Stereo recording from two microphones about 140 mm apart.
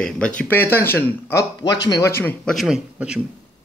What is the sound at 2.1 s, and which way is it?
Speech, 10° left (ahead or behind).